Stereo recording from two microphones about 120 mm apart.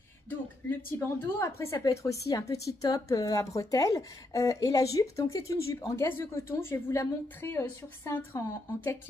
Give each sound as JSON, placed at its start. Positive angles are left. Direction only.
{"t": 0.7, "sound": "a woman's voice", "side_deg": 20}